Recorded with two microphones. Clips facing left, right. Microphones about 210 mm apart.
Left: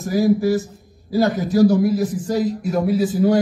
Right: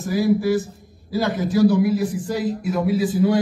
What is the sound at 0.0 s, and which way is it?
A man's voice, 40° left (ahead or behind).